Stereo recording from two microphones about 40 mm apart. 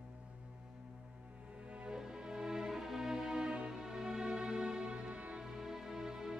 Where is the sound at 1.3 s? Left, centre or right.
Right.